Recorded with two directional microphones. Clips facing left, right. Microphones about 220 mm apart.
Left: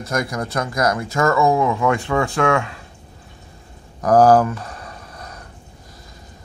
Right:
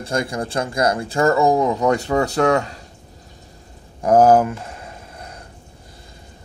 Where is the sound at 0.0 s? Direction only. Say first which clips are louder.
Right 1 dB; 30° right (ahead or behind).